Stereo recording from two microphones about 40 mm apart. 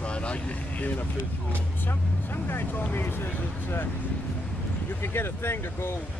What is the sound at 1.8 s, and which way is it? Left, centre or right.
Speech, left.